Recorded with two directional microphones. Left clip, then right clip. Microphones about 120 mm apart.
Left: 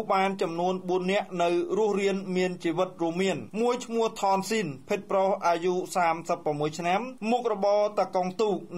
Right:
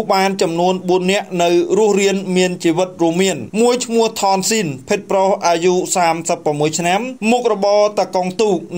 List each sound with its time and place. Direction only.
0.1 s a man's voice: 30° right (ahead or behind)